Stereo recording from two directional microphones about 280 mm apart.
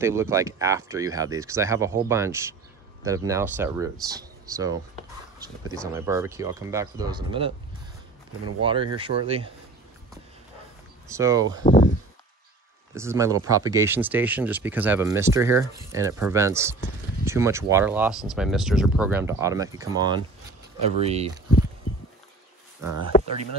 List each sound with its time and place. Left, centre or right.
0.0 s speech: centre
5.9 s speech: centre
8.6 s speech: centre
11.1 s speech: centre
11.6 s speech: left
12.9 s speech: centre
23.1 s a sound: left